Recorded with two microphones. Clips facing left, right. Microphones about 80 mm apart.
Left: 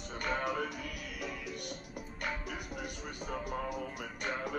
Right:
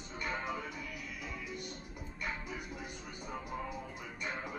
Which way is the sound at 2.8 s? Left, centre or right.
Left.